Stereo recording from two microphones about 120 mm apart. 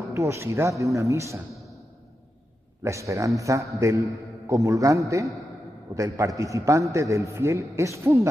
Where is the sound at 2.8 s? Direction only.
25° right (ahead or behind).